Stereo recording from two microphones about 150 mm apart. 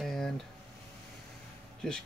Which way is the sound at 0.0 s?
Centre (ahead or behind).